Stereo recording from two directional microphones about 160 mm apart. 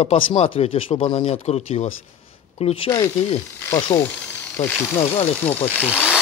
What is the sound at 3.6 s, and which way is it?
Speech, 20° left (ahead or behind).